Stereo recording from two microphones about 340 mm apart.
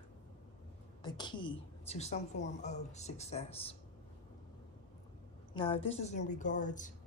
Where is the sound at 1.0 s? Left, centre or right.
Centre.